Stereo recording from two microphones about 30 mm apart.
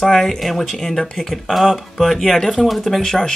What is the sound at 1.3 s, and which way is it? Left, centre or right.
Speech, centre.